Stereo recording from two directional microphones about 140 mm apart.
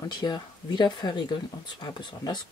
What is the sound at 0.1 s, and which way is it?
Speech, 30° left (ahead or behind).